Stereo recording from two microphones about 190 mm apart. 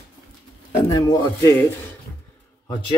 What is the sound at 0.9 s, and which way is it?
Speech, 20° left (ahead or behind).